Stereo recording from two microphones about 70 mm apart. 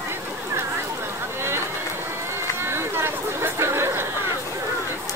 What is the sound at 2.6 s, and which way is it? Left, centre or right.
Chatter, right.